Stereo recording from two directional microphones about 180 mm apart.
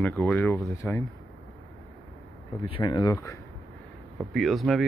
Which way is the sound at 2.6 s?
25° left (ahead or behind).